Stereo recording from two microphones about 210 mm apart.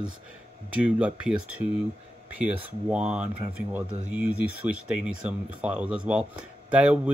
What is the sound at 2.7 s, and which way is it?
Speech, 5° right (ahead or behind).